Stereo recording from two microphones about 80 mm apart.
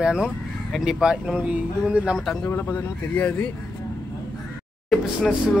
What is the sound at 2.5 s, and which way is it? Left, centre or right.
Speech, left.